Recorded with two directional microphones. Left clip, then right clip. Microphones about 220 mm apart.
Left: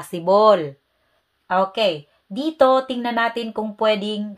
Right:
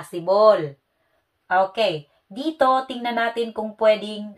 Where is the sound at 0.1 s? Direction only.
45° left (ahead or behind).